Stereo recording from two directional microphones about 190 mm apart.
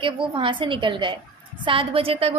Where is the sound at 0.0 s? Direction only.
25° right (ahead or behind).